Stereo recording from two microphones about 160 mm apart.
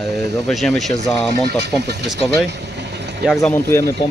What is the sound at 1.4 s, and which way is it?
Speech, 90° right.